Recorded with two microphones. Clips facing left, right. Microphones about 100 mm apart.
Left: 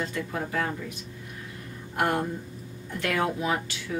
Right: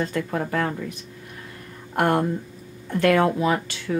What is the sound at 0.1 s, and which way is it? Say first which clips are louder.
Speech: right 5 dB; 55° right (ahead or behind).